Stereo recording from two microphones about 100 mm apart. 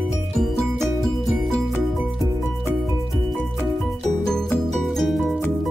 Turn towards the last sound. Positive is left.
turn(degrees=0)  # may be behind; listen again after turning